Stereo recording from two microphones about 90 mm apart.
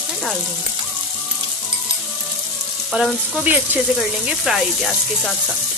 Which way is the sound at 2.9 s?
5° right (ahead or behind).